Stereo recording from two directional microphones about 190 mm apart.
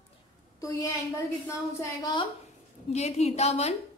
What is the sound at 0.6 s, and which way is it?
A woman's voice, 15° left (ahead or behind).